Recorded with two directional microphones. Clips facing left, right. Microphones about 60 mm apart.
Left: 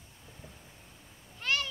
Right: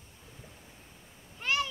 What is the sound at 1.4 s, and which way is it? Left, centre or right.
Goose, centre.